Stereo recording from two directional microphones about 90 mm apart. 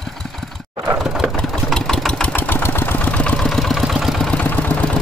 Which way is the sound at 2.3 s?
20° left (ahead or behind).